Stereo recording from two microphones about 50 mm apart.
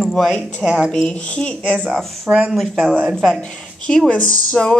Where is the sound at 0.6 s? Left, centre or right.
Centre.